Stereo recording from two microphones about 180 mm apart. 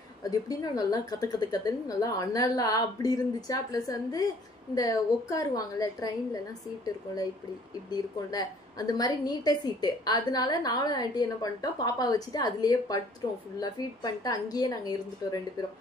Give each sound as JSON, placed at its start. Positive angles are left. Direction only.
{"t": 0.2, "sound": "a woman's voice", "side_deg": 20}